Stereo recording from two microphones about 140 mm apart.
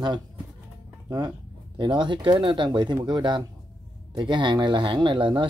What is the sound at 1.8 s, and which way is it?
Speech, 35° right (ahead or behind).